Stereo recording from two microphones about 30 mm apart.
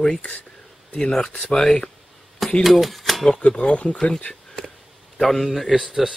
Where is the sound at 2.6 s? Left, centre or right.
Centre.